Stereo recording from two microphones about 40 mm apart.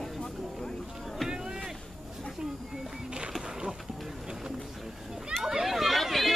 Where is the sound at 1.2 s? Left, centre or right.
Centre.